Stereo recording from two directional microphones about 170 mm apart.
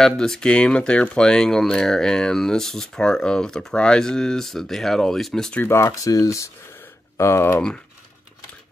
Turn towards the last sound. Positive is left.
turn(degrees=10)  # may be behind; listen again after turning